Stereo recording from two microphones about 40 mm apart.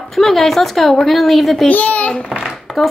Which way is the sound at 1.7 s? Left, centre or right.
Left.